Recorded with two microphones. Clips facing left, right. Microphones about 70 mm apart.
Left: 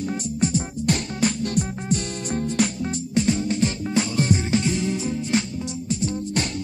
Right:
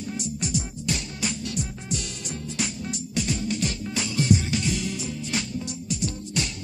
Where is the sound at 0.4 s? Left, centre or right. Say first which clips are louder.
Left 9 dB; left.